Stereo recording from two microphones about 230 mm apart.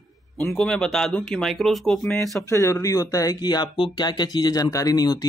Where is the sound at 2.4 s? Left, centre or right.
Centre.